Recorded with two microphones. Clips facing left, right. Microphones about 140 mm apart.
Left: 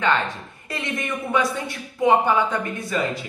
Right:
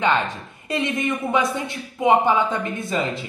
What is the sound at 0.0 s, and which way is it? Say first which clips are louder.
A woman's voice: right 1 dB; 20° right (ahead or behind).